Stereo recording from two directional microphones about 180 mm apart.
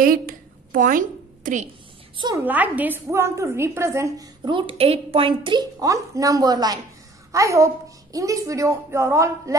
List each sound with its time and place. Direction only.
0.0 s a woman's voice: 50° right (ahead or behind)
2.1 s a woman's voice: 25° right (ahead or behind)
2.4 s a woman's voice: 10° right (ahead or behind)